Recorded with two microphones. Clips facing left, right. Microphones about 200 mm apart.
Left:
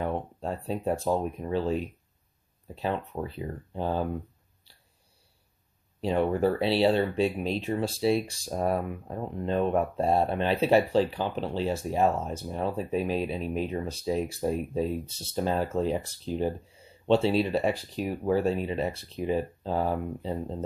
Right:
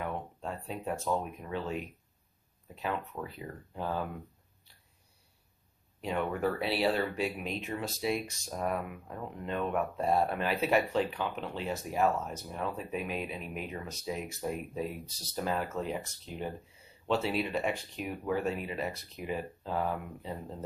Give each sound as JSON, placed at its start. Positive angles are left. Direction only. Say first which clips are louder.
{"t": 0.0, "sound": "speech", "louder": "left 6 dB", "side_deg": 35}
{"t": 5.9, "sound": "speech", "louder": "left 7 dB", "side_deg": 30}